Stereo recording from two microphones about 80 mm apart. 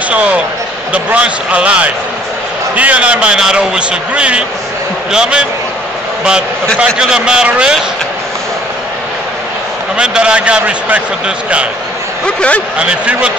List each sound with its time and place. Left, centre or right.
0.1 s a sound: centre
0.9 s a man's voice: centre
6.8 s a man's voice: centre
9.9 s a man's voice: centre
12.3 s speech: centre
12.7 s a man's voice: centre